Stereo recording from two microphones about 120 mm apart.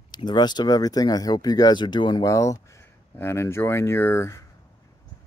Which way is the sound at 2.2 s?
25° left (ahead or behind).